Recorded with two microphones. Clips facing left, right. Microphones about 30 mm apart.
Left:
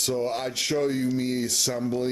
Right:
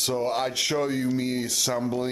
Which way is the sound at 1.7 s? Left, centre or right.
Right.